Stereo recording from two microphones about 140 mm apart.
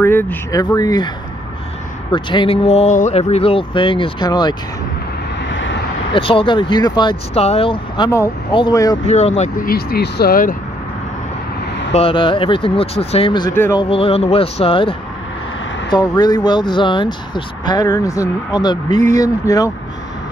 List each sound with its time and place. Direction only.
0.0 s speech: 15° left (ahead or behind)
0.7 s speech: 30° left (ahead or behind)
2.1 s speech: 35° left (ahead or behind)
6.1 s speech: 40° left (ahead or behind)
7.3 s speech: 45° left (ahead or behind)
9.0 s speech: 50° left (ahead or behind)
9.6 s speech: 90° left
11.9 s speech: 40° left (ahead or behind)
13.5 s speech: 20° left (ahead or behind)
13.7 s speech: 40° left (ahead or behind)
15.9 s speech: 30° left (ahead or behind)
17.8 s speech: 20° left (ahead or behind)